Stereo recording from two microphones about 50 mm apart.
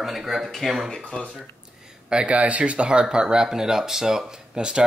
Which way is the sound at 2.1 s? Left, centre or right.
Centre.